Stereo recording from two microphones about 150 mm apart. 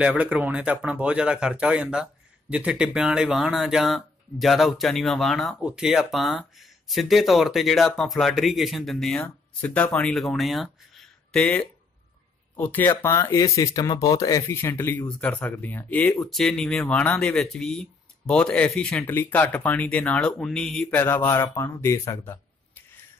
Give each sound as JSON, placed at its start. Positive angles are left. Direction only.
{"t": 0.0, "sound": "speech", "side_deg": -10}
{"t": 21.0, "sound": "speech", "side_deg": 15}